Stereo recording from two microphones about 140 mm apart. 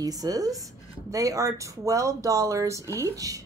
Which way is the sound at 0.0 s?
25° right (ahead or behind).